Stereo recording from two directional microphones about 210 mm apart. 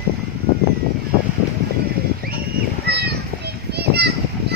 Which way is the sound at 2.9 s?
50° right (ahead or behind).